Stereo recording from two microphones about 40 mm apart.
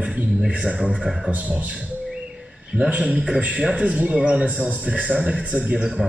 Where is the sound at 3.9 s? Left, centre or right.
Centre.